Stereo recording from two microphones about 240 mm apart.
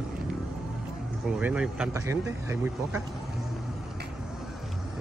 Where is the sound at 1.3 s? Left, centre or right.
Centre.